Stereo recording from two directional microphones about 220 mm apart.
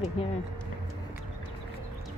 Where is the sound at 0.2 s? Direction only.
25° left (ahead or behind).